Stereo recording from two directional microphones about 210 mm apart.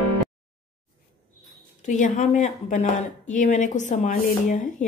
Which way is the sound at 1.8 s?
35° left (ahead or behind).